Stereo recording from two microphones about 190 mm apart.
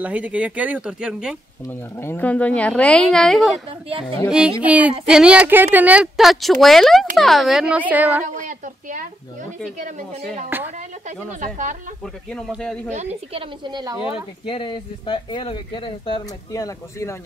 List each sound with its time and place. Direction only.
0.0 s speech: 5° right (ahead or behind)
1.7 s a woman's voice: 10° left (ahead or behind); by 8.3 s 10° right (ahead or behind)
8.4 s a sound: 45° right (ahead or behind)
10.5 s speech: 10° right (ahead or behind)
11.1 s a woman's voice: 40° right (ahead or behind)
12.3 s a woman's voice: centre (ahead or behind)
12.9 s a woman's voice: 35° right (ahead or behind)
13.7 s speech: 20° right (ahead or behind)
14.1 s speech: 25° left (ahead or behind)